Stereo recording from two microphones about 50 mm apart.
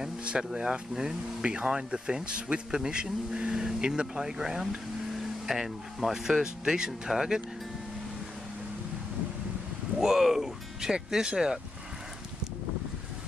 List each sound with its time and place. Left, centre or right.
0.0 s vehicle: centre
0.6 s speech: centre
9.9 s speech: centre